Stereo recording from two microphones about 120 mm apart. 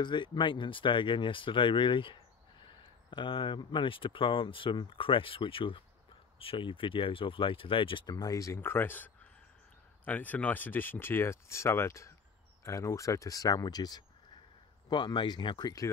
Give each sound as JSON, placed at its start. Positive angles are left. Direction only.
{"t": 0.0, "sound": "speech", "side_deg": 40}